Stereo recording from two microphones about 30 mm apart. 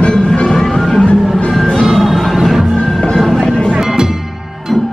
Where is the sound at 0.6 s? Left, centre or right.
Centre.